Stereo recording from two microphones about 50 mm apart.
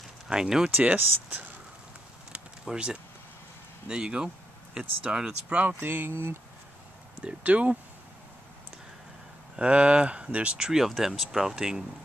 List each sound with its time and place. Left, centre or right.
0.3 s speech: centre
0.9 s speech: right
2.6 s speech: centre
5.8 s speech: right
7.2 s speech: right
9.6 s speech: right
10.6 s speech: centre